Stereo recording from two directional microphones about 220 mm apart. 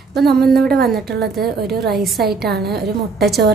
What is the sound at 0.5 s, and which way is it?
A woman's voice, 45° right (ahead or behind).